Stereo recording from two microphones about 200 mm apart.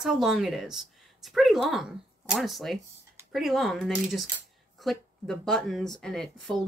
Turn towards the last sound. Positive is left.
turn(degrees=0)  # may be behind; listen again after turning